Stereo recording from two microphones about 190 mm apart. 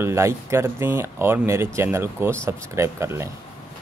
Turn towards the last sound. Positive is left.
turn(degrees=-15)  # may be behind; listen again after turning